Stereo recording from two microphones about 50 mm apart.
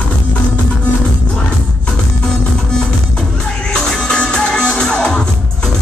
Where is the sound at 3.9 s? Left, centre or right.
Centre.